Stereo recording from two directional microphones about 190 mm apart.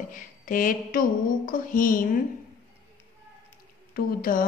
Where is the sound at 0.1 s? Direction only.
45° left (ahead or behind).